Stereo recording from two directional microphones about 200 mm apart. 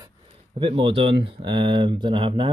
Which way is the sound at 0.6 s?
25° right (ahead or behind).